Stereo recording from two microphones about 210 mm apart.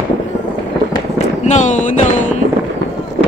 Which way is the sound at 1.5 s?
35° left (ahead or behind).